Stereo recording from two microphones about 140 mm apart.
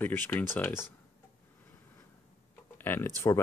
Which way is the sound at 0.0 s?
15° left (ahead or behind).